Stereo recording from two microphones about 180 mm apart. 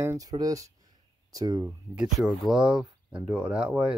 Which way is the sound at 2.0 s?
Centre (ahead or behind).